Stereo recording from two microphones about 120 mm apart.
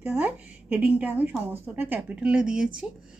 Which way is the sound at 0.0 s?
20° right (ahead or behind).